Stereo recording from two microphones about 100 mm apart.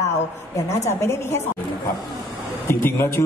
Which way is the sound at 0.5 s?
30° left (ahead or behind).